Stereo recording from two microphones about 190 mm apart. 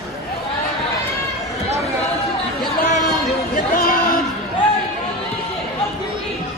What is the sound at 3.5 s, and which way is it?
Chatter, 50° left (ahead or behind).